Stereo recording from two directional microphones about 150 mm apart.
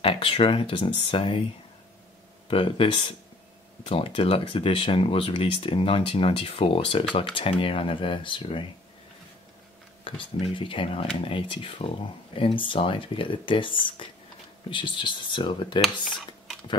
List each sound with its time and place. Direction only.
0.0 s speech: 35° left (ahead or behind)
2.4 s speech: 35° left (ahead or behind)
10.0 s speech: 35° left (ahead or behind)